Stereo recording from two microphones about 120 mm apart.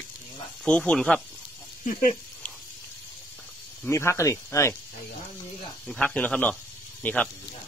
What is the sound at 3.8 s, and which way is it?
Speech, 20° left (ahead or behind).